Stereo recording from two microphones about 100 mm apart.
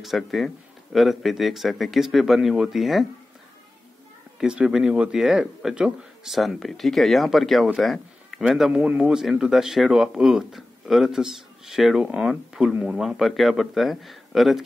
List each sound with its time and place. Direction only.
0.0 s speech: centre (ahead or behind)
4.4 s speech: 10° right (ahead or behind)
13.0 s speech: centre (ahead or behind)